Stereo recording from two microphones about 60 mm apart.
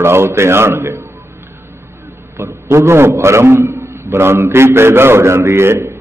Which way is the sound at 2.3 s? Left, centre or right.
Right.